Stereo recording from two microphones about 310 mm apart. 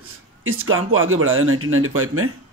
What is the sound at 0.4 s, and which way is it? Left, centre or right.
Speech, right.